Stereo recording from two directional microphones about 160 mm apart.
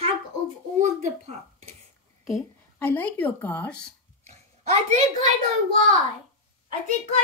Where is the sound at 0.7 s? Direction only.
50° right (ahead or behind).